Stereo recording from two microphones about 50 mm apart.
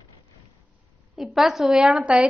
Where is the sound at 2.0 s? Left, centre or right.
Right.